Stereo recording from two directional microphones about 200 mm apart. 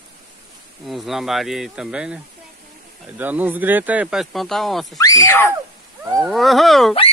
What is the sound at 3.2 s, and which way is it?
Speech, 10° right (ahead or behind).